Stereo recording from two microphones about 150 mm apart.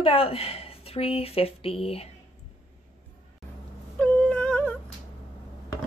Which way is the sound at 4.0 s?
10° left (ahead or behind).